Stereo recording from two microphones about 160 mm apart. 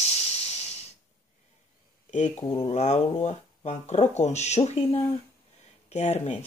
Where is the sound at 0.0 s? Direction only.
40° left (ahead or behind).